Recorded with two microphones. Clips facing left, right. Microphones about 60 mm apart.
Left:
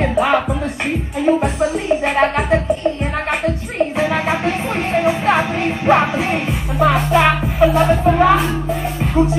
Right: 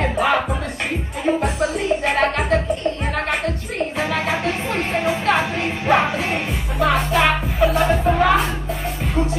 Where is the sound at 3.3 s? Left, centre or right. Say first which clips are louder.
Left 3 dB; centre.